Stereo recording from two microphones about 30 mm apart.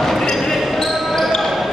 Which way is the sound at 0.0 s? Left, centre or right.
Centre.